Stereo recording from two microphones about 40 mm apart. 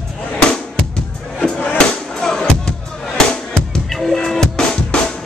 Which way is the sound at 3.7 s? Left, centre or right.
Centre.